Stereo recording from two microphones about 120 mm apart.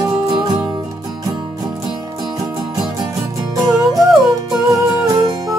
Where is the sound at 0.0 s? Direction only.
40° right (ahead or behind).